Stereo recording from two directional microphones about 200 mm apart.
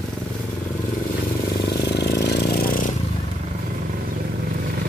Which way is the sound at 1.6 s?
55° left (ahead or behind).